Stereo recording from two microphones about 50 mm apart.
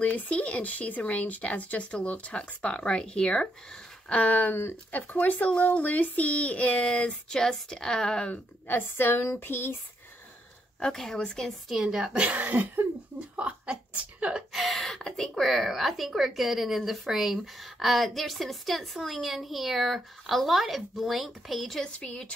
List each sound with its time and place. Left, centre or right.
0.0 s speech: left
7.2 s speech: centre
8.3 s speech: left
10.8 s speech: centre
11.7 s a woman's voice: centre
12.4 s cough: right
13.4 s a sound: right
14.5 s a woman's voice: centre
21.8 s speech: left